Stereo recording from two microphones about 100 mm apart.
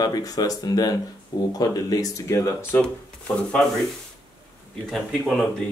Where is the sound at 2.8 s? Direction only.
10° left (ahead or behind).